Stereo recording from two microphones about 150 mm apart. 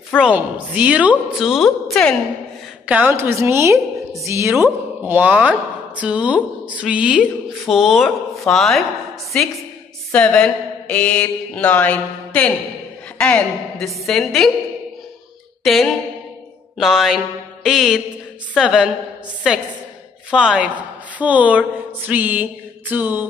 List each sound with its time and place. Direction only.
0.2 s a woman's voice: 10° right (ahead or behind)
2.9 s a woman's voice: 10° right (ahead or behind)
10.1 s mantra: 5° left (ahead or behind)
13.2 s a woman's voice: 5° left (ahead or behind)
15.6 s a sound: centre (ahead or behind)
16.7 s a woman's voice: centre (ahead or behind)
20.2 s a woman's voice: 5° right (ahead or behind)